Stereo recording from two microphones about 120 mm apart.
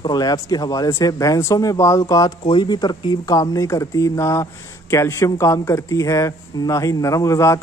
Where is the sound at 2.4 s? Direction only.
40° left (ahead or behind).